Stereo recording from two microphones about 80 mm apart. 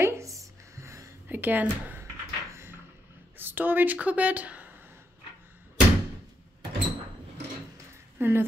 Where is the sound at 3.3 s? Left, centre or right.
Right.